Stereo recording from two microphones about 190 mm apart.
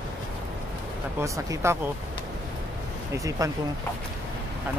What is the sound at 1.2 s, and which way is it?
Speech, 15° right (ahead or behind).